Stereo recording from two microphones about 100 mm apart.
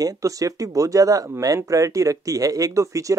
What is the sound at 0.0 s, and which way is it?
Speech, 35° right (ahead or behind).